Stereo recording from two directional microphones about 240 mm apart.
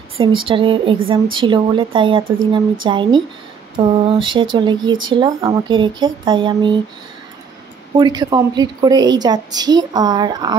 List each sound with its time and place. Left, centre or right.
0.2 s speech: right
7.9 s a woman's voice: centre